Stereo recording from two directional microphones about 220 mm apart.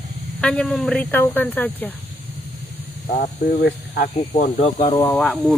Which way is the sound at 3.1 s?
40° left (ahead or behind).